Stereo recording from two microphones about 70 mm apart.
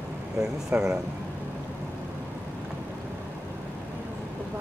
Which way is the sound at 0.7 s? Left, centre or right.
Right.